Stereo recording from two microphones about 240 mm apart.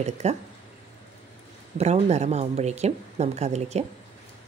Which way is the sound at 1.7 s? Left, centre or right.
Right.